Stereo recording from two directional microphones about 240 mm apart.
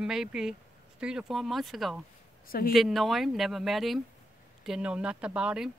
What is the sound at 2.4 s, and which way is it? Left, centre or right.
Speech, left.